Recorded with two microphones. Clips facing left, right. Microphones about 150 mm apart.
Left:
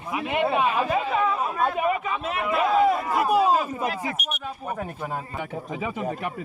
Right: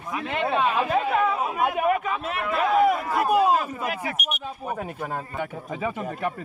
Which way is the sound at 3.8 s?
15° left (ahead or behind).